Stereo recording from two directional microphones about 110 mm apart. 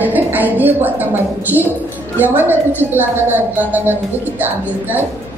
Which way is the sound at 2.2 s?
15° right (ahead or behind).